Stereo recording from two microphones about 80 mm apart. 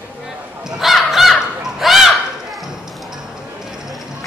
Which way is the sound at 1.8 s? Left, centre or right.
Centre.